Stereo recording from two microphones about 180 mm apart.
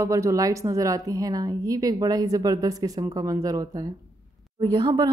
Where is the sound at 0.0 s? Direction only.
15° right (ahead or behind).